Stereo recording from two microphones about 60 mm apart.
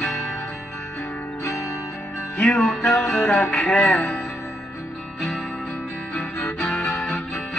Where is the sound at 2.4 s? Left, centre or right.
Centre.